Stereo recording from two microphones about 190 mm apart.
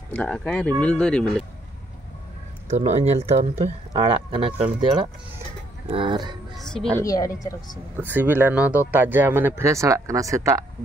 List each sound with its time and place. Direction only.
0.1 s speech: 5° left (ahead or behind)
2.7 s speech: 35° right (ahead or behind)
5.9 s speech: 25° right (ahead or behind)
6.5 s music: centre (ahead or behind)
7.0 s speech: 15° left (ahead or behind)
8.1 s speech: 10° right (ahead or behind)